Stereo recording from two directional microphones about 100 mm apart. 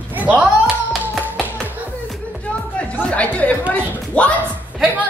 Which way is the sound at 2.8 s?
15° left (ahead or behind).